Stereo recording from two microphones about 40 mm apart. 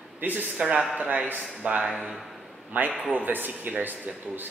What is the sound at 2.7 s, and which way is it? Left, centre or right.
Speech, right.